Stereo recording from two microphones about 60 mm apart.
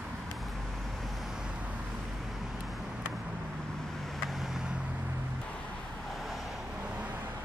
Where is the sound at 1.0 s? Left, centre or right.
Centre.